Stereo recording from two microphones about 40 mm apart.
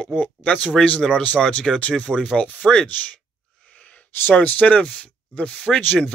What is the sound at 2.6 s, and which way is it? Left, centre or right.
Speech, centre.